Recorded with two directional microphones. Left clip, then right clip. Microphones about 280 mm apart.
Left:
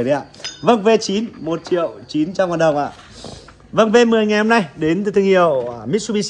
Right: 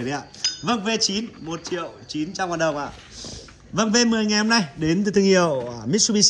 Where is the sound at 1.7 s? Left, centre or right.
Left.